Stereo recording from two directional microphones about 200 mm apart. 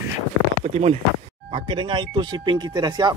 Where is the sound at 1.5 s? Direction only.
25° right (ahead or behind).